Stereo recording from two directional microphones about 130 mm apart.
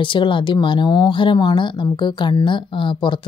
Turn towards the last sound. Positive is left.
turn(degrees=40)  # may be behind; listen again after turning